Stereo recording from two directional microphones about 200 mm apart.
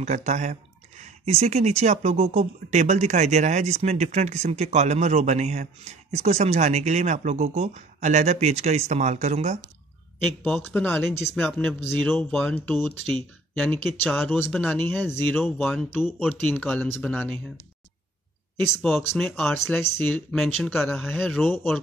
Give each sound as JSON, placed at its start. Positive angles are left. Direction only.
{"t": 0.0, "sound": "speech", "side_deg": -35}
{"t": 10.4, "sound": "speech", "side_deg": 5}
{"t": 18.8, "sound": "speech", "side_deg": 5}
{"t": 19.6, "sound": "speech", "side_deg": 10}